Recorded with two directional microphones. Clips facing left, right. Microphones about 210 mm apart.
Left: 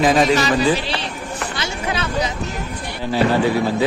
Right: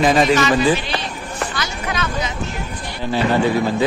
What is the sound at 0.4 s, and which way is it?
Speech, 35° left (ahead or behind).